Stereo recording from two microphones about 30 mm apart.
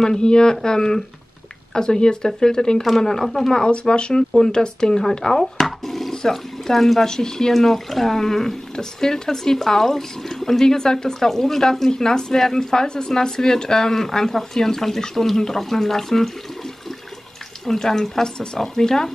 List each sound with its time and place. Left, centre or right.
0.0 s speech: left; by 3.6 s centre
3.6 s speech: left
5.2 s a sound: centre
7.1 s speech: centre
11.1 s speech: centre
11.9 s speech: left
17.6 s speech: centre
18.2 s speech: left